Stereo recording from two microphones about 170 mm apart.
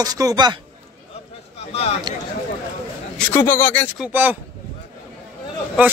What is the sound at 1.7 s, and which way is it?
Speech, 35° left (ahead or behind).